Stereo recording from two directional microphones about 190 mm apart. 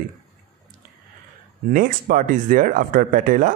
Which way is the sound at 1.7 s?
45° right (ahead or behind).